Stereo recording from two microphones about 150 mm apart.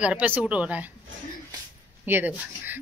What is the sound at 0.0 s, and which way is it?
Speech, 10° right (ahead or behind).